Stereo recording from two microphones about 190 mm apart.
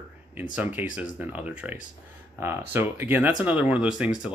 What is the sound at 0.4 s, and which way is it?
Speech, 10° right (ahead or behind).